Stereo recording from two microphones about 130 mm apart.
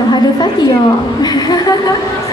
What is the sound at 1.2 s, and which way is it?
Speech, 30° left (ahead or behind).